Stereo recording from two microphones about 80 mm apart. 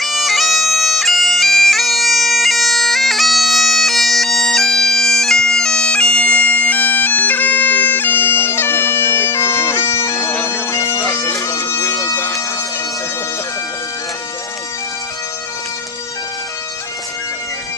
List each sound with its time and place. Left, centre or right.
0.0 s bagpipes: centre; by 12.2 s left